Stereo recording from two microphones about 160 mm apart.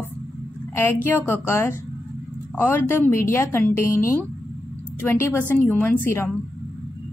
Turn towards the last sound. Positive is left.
turn(degrees=15)  # may be behind; listen again after turning